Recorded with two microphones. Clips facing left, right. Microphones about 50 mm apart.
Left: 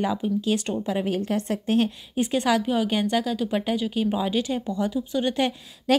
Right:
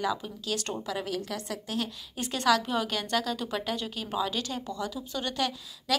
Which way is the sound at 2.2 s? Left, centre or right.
Centre.